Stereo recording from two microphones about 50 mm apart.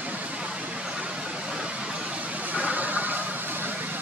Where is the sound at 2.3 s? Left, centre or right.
Right.